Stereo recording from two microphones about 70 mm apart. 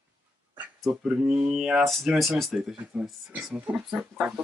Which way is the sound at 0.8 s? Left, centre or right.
Centre.